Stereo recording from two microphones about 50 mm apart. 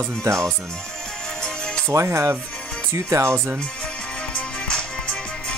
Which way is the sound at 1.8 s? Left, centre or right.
Right.